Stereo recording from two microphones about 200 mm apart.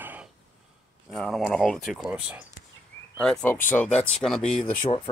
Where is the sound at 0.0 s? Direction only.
10° right (ahead or behind).